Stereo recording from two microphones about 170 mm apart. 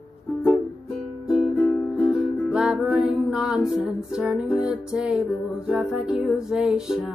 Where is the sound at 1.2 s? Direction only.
Centre (ahead or behind).